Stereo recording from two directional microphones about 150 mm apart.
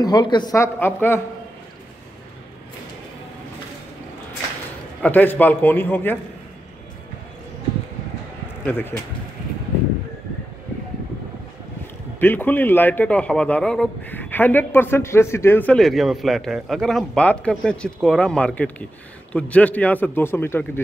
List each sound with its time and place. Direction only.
0.0 s speech: 30° left (ahead or behind)
5.0 s a man's voice: 10° left (ahead or behind)
8.6 s a man's voice: 15° left (ahead or behind)
12.2 s a man's voice: 15° left (ahead or behind)